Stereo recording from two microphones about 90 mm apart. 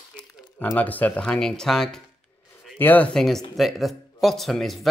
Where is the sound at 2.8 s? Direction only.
20° left (ahead or behind).